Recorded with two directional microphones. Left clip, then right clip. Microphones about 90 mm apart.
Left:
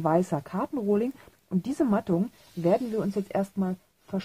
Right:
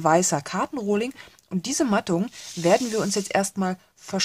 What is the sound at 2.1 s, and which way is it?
Speech, 20° right (ahead or behind).